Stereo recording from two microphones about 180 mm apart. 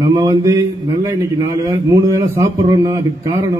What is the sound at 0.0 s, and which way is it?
A man's voice, 20° right (ahead or behind).